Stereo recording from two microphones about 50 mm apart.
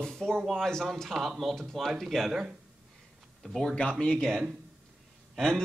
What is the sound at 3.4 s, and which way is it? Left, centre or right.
Speech, centre.